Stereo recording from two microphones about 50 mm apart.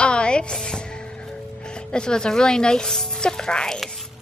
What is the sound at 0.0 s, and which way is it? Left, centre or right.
Music, left.